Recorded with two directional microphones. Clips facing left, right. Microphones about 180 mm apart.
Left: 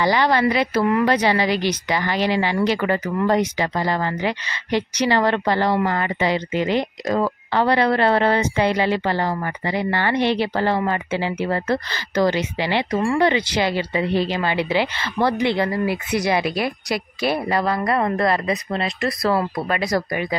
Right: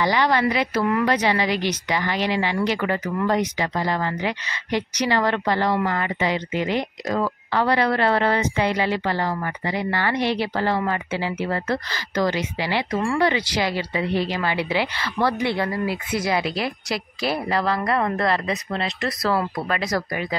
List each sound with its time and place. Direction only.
0.0 s speech: 35° left (ahead or behind)
15.9 s speech: 75° left (ahead or behind)
16.3 s speech: 20° left (ahead or behind)
20.1 s speech: 10° left (ahead or behind)